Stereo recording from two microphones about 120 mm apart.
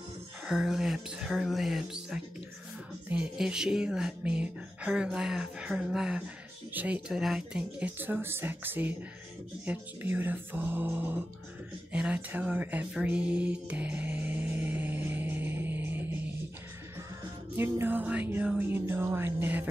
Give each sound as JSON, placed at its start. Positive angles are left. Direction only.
{"t": 0.5, "sound": "speech", "side_deg": -5}
{"t": 11.9, "sound": "music", "side_deg": -10}
{"t": 17.6, "sound": "speech", "side_deg": -15}